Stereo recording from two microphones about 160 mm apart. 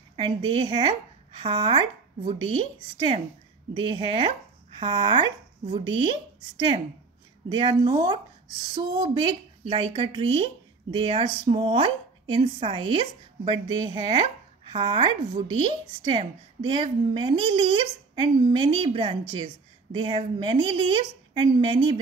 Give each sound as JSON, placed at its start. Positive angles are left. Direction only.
{"t": 0.1, "sound": "a woman's voice", "side_deg": -30}
{"t": 3.7, "sound": "a woman's voice", "side_deg": -30}
{"t": 7.4, "sound": "a woman's voice", "side_deg": -30}